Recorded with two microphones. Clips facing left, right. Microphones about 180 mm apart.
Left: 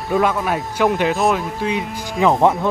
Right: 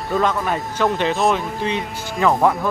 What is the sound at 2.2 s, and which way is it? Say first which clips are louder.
Speech: left 2 dB; 20° left (ahead or behind).